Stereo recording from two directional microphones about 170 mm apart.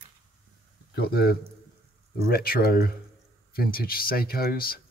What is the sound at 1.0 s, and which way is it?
Speech, 65° left (ahead or behind).